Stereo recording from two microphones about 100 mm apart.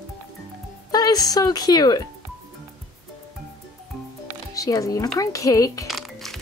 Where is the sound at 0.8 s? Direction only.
40° left (ahead or behind).